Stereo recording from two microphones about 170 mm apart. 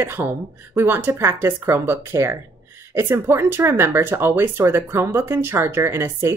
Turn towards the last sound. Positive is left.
turn(degrees=-15)  # may be behind; listen again after turning